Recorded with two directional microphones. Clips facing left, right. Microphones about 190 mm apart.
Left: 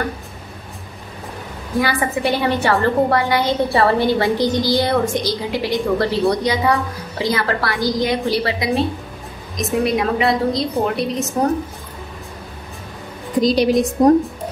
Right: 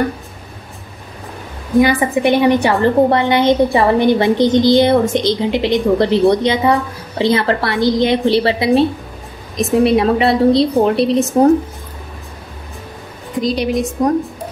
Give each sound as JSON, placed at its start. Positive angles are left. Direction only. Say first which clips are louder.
{"t": 1.8, "sound": "a woman's voice", "louder": "right 7 dB", "side_deg": -20}
{"t": 13.4, "sound": "a woman's voice", "louder": "left 2 dB", "side_deg": 35}